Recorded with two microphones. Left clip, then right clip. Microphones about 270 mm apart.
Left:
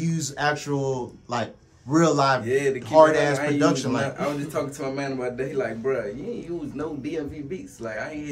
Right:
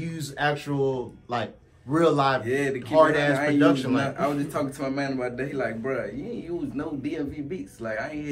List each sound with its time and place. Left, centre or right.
0.0 s speech: left
2.4 s a man's voice: centre
2.9 s a man's voice: left
4.0 s a man's voice: centre
7.8 s a man's voice: centre